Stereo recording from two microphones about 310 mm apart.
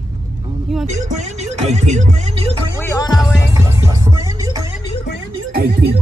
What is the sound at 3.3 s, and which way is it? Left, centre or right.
Music, centre.